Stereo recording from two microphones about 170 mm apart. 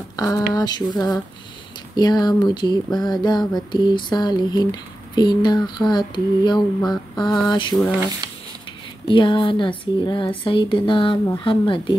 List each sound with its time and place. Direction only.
0.1 s speech: 20° left (ahead or behind)
2.0 s speech: 25° left (ahead or behind)
9.0 s speech: 30° left (ahead or behind)